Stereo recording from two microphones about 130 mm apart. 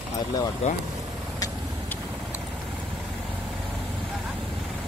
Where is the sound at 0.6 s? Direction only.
55° left (ahead or behind).